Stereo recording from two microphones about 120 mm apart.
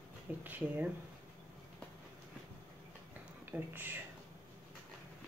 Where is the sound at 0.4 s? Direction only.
15° right (ahead or behind).